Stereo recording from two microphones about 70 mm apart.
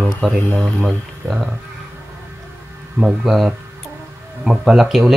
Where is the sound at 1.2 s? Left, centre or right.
Right.